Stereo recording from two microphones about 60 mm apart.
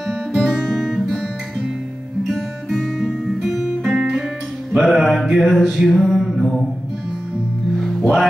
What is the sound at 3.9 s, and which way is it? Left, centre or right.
Music, centre.